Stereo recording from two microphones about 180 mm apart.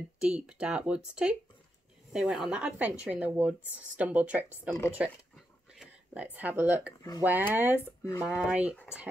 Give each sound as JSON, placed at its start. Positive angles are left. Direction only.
{"t": 0.2, "sound": "speech", "side_deg": -5}
{"t": 4.9, "sound": "a sound", "side_deg": -5}
{"t": 7.2, "sound": "speech", "side_deg": -10}